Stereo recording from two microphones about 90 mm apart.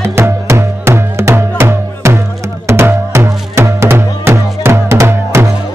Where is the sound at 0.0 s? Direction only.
30° right (ahead or behind).